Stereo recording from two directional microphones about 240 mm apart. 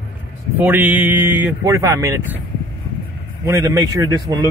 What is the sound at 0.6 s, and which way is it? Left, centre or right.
Speech, centre.